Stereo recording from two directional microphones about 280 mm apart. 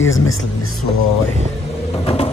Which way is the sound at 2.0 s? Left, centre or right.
Left.